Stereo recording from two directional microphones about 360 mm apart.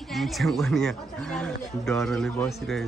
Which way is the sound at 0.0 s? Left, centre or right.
Centre.